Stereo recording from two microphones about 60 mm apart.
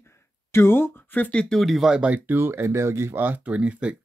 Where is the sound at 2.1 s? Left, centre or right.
Right.